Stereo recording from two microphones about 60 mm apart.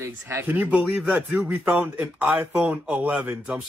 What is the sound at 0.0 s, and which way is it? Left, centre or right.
Speech, right.